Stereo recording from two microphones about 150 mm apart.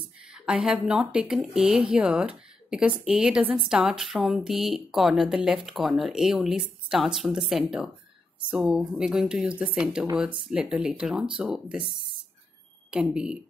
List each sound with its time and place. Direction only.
0.3 s speech: 5° right (ahead or behind)
11.8 s speech: 35° right (ahead or behind)
12.9 s speech: 5° right (ahead or behind)